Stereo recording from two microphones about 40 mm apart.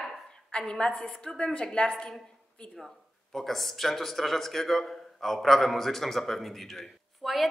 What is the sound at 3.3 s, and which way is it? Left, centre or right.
Speech, centre.